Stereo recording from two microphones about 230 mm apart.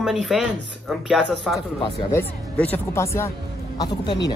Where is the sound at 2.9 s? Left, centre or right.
Centre.